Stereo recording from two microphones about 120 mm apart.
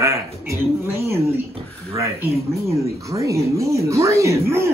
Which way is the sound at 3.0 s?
25° right (ahead or behind).